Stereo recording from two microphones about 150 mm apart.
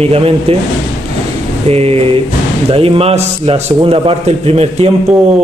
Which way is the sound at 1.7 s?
40° right (ahead or behind).